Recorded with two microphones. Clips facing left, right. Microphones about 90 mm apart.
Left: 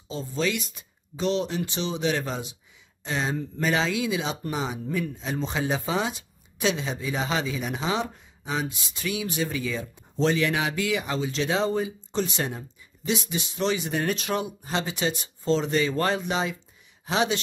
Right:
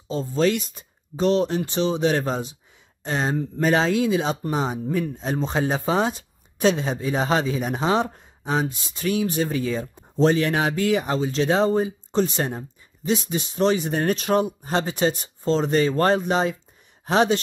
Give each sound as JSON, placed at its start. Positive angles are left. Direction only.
{"t": 0.1, "sound": "speech", "side_deg": -40}